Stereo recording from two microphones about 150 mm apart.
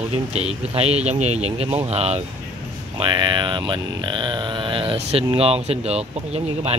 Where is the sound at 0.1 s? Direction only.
45° right (ahead or behind).